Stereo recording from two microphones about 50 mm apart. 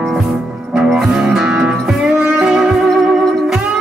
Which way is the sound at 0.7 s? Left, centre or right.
Centre.